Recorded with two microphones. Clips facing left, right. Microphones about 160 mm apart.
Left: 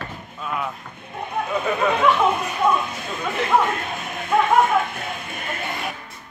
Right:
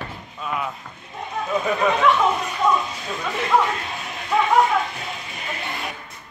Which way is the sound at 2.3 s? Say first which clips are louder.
Even; 55° left (ahead or behind).